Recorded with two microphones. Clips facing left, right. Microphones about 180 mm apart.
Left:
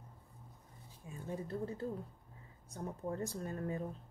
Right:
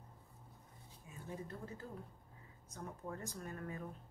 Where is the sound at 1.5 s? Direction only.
30° left (ahead or behind).